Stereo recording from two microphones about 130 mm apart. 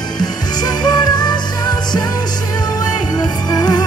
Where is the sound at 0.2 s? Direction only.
30° left (ahead or behind).